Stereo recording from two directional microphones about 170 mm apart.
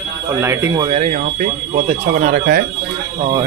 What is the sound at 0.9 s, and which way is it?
Speech, 40° right (ahead or behind).